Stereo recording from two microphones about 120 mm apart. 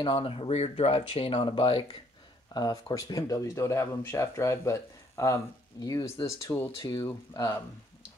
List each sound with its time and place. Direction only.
0.0 s speech: 45° left (ahead or behind)
2.5 s speech: 30° left (ahead or behind)